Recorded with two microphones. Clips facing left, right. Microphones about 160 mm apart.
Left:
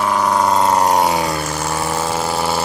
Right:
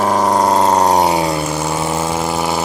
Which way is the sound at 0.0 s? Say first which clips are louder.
Right 3 dB; 40° right (ahead or behind).